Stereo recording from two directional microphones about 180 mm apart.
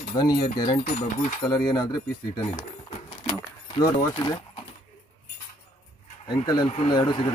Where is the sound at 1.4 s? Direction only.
25° left (ahead or behind).